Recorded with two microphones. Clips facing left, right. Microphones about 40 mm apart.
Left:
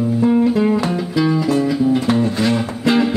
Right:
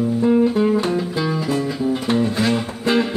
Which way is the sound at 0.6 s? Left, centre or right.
Centre.